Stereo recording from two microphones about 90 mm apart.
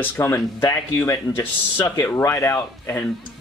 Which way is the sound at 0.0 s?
25° left (ahead or behind).